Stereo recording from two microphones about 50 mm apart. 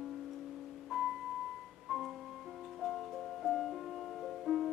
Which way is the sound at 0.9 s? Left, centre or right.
Centre.